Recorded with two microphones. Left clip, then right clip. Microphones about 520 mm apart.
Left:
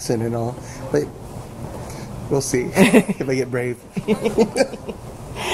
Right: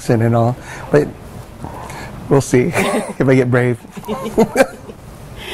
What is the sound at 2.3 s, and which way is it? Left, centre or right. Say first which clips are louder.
Speech: right 7 dB; right.